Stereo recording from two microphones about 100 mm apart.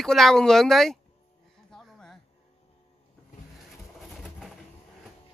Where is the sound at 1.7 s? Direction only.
5° left (ahead or behind).